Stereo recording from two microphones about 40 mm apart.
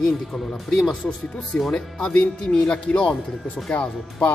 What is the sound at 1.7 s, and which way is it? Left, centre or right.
Speech, left.